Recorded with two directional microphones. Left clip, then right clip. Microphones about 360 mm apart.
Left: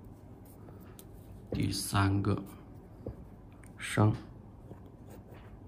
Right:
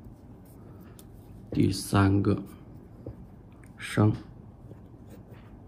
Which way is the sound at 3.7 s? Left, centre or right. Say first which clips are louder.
Right 3 dB; centre.